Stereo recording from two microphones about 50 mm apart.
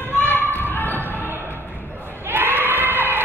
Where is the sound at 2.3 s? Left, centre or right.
Right.